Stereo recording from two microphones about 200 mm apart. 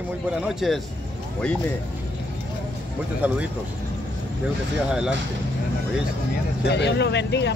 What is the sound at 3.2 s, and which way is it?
Speech, 5° right (ahead or behind).